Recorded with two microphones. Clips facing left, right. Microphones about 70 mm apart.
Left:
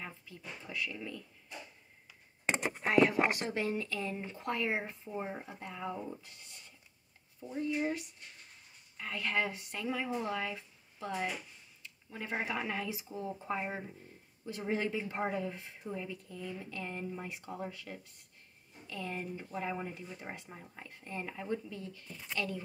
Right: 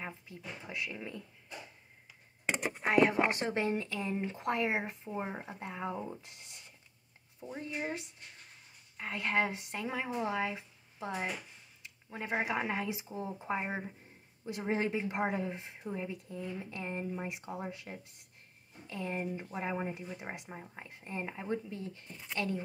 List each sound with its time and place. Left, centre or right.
0.4 s speech: right
2.8 s speech: right